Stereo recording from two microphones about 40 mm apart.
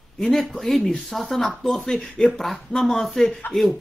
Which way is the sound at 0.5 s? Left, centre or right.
Centre.